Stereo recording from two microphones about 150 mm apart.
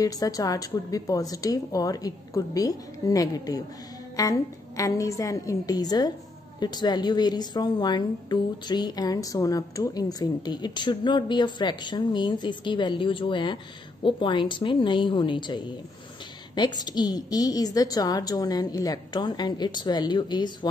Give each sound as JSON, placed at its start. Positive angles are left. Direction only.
{"t": 0.0, "sound": "a woman's voice", "side_deg": 25}